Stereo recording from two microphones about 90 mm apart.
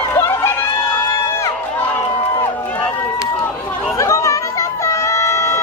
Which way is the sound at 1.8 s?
20° left (ahead or behind).